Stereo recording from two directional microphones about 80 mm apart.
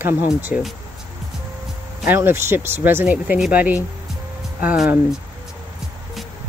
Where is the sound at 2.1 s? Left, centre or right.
Right.